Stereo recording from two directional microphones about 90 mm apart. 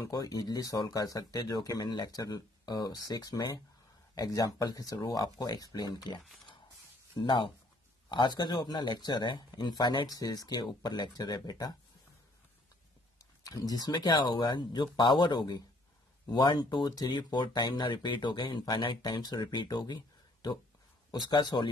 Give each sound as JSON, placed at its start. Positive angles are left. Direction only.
{"t": 0.0, "sound": "speech", "side_deg": 45}
{"t": 7.2, "sound": "speech", "side_deg": 60}
{"t": 13.2, "sound": "speech", "side_deg": 40}
{"t": 21.3, "sound": "speech", "side_deg": 50}